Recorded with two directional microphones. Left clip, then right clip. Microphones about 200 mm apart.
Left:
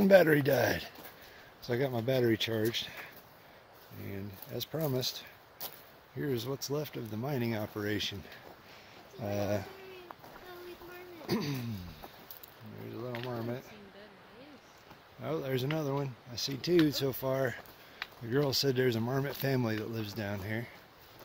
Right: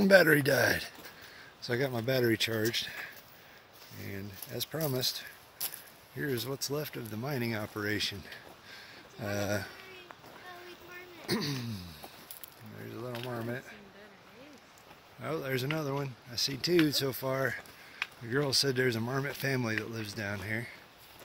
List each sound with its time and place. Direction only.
0.0 s speech: centre (ahead or behind)
5.6 s a sound: 25° left (ahead or behind)
6.1 s speech: 10° left (ahead or behind)
9.2 s speech: centre (ahead or behind)
11.2 s speech: 5° left (ahead or behind)
13.0 s speech: 15° right (ahead or behind)
13.3 s speech: centre (ahead or behind)
15.2 s speech: 10° left (ahead or behind)